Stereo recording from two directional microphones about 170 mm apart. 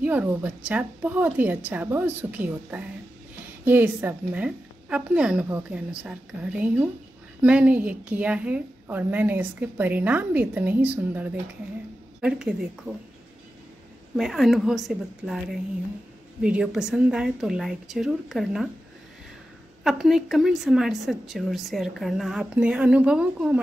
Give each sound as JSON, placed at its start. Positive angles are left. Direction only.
{"t": 0.0, "sound": "a woman's voice", "side_deg": -10}
{"t": 14.1, "sound": "a woman's voice", "side_deg": 0}
{"t": 16.4, "sound": "a woman's voice", "side_deg": -5}
{"t": 19.8, "sound": "a woman's voice", "side_deg": 0}